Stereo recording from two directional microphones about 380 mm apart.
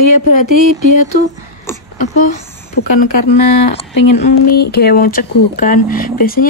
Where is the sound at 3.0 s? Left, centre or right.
Centre.